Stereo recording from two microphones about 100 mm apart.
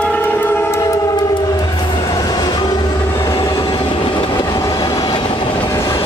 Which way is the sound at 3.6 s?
50° left (ahead or behind).